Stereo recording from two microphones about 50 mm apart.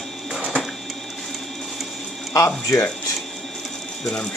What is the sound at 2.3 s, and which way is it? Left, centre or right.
Speech, left.